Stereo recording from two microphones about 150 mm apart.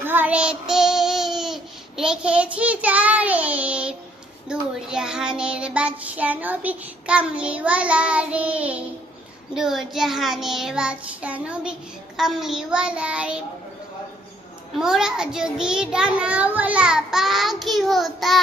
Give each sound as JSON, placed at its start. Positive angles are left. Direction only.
{"t": 0.0, "sound": "child singing", "side_deg": -10}
{"t": 14.8, "sound": "child singing", "side_deg": -5}